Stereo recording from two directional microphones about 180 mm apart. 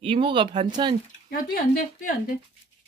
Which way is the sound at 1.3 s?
55° left (ahead or behind).